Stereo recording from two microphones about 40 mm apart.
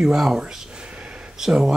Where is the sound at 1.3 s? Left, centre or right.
Centre.